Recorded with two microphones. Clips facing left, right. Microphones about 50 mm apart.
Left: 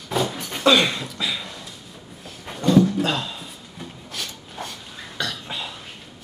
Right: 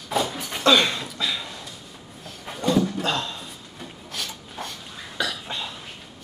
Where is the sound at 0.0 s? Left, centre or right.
Centre.